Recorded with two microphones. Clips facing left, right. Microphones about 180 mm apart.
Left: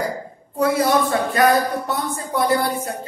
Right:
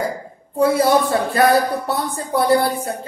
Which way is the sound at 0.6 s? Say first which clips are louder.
Right 3 dB; 30° right (ahead or behind).